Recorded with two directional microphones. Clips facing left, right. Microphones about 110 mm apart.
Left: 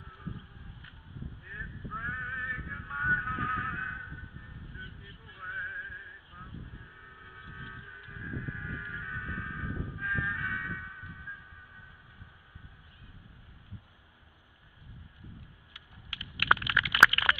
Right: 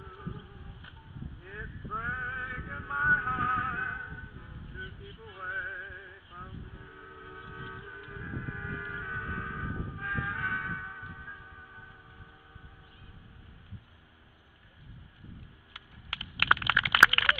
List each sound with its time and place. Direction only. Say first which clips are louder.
1.4 s vehicle: right 1 dB; 40° right (ahead or behind)
4.7 s music: right 4 dB; 45° right (ahead or behind)
7.0 s train: right 5 dB; 40° right (ahead or behind)
15.7 s a sound: right 6 dB; 50° right (ahead or behind)